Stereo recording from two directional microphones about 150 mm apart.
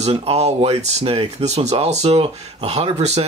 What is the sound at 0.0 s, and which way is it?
Speech, 45° right (ahead or behind).